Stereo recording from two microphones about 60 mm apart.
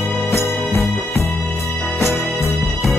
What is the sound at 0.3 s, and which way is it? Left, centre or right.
Music, left.